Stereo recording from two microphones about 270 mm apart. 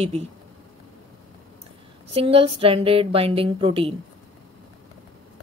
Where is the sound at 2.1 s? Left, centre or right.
Right.